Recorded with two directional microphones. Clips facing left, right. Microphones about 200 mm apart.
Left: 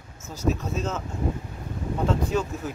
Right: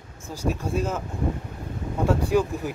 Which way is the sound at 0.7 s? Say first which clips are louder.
Right 3 dB; 10° right (ahead or behind).